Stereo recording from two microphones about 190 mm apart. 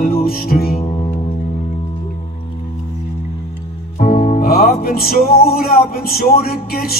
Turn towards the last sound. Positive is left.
turn(degrees=50)  # may be behind; listen again after turning